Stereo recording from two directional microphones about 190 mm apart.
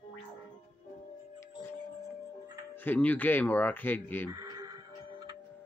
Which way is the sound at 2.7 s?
10° left (ahead or behind).